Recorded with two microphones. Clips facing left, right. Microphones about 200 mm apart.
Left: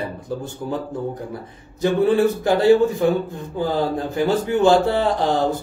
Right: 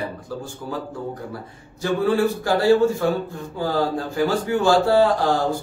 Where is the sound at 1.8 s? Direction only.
20° left (ahead or behind).